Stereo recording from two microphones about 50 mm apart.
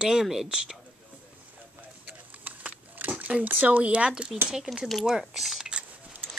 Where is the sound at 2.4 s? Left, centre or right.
Right.